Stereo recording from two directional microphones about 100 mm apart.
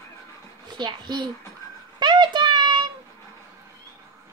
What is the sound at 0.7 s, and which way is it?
Speech, 45° right (ahead or behind).